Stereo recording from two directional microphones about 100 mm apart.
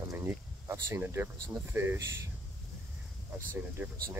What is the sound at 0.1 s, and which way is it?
Speech, 25° right (ahead or behind).